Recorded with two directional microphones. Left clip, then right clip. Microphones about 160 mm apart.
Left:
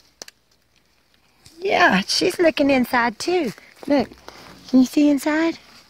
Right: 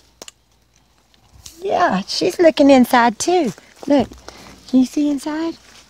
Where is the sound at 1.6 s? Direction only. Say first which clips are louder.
Even; 15° left (ahead or behind).